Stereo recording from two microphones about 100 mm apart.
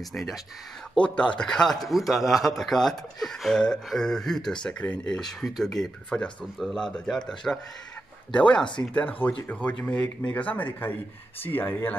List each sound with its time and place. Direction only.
0.1 s a man's voice: centre (ahead or behind); by 11.9 s 20° left (ahead or behind)